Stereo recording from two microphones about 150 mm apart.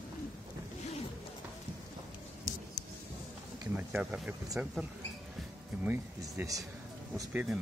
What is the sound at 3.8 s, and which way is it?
Speech, 5° right (ahead or behind).